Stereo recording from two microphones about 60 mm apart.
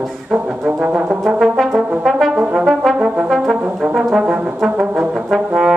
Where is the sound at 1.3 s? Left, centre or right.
Centre.